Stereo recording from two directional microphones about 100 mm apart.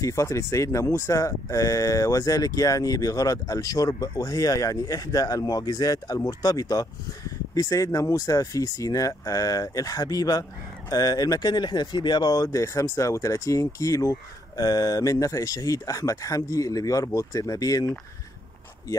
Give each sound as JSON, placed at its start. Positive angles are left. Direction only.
{"t": 0.0, "sound": "speech", "side_deg": 30}